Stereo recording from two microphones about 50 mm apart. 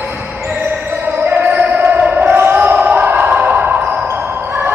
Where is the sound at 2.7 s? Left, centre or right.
Right.